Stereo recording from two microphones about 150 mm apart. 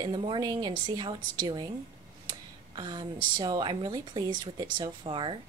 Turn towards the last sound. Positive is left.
turn(degrees=-35)  # may be behind; listen again after turning